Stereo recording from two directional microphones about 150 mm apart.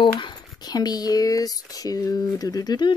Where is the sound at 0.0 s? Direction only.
30° left (ahead or behind).